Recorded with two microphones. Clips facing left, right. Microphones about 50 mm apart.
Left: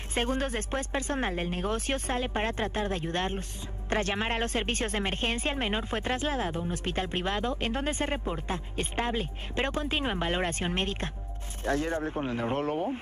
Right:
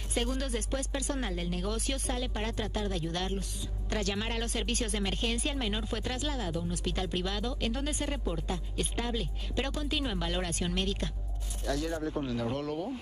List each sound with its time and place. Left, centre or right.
0.1 s a woman's voice: left